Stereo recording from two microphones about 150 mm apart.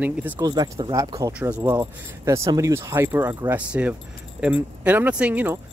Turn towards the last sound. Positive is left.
turn(degrees=-10)  # may be behind; listen again after turning